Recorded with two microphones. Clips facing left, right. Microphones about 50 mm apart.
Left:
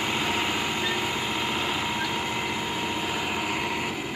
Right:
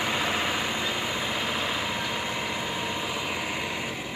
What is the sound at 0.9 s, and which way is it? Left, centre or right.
Vehicle, left.